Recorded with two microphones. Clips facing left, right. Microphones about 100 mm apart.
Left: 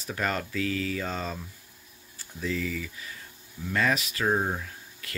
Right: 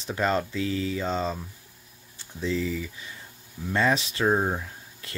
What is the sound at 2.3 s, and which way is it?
Speech, 25° right (ahead or behind).